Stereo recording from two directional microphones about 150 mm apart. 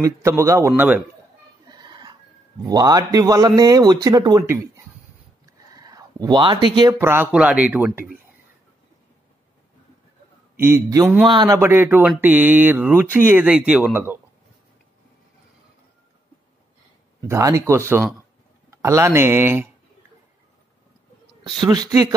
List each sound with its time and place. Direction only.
0.0 s speech: 20° right (ahead or behind)
1.7 s music: 30° right (ahead or behind)
2.6 s a man's voice: 25° right (ahead or behind)
5.8 s speech: 25° right (ahead or behind)
6.9 s speech: 15° right (ahead or behind)
10.6 s a man's voice: 20° right (ahead or behind)
17.3 s a man's voice: 20° right (ahead or behind)
21.6 s a man's voice: 25° right (ahead or behind)